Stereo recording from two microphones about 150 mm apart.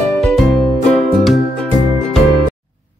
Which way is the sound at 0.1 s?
5° left (ahead or behind).